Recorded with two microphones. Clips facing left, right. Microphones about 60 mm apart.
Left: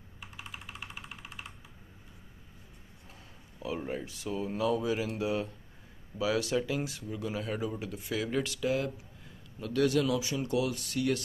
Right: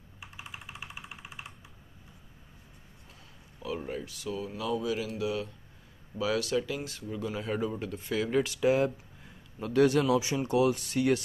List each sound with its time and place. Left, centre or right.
0.4 s vehicle: centre
3.5 s a sound: centre
4.0 s speech: left
6.1 s speech: centre
8.5 s speech: right